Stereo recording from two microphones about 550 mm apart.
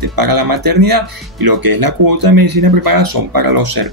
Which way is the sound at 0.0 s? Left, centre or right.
Right.